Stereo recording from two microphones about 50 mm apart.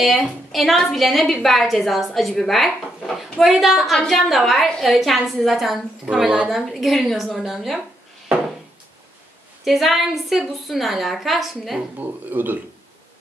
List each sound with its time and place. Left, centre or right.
0.0 s a woman's voice: centre
6.2 s a woman's voice: centre
6.5 s a woman's voice: centre
9.7 s a woman's voice: centre
12.0 s speech: right